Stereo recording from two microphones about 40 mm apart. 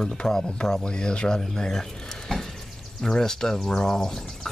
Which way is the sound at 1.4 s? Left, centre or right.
Centre.